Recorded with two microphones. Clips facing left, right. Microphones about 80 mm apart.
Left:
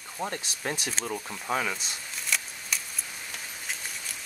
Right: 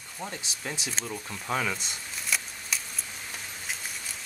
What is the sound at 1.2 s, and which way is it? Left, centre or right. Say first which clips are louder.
Shuffling cards: right 1 dB; centre.